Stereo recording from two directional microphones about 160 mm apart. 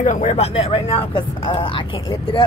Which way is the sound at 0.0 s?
50° left (ahead or behind).